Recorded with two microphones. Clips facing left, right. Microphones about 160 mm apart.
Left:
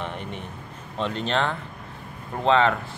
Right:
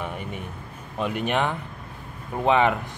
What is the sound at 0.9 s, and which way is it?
Speech, 10° right (ahead or behind).